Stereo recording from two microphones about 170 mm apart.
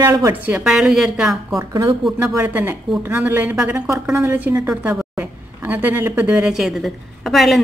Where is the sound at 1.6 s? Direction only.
20° right (ahead or behind).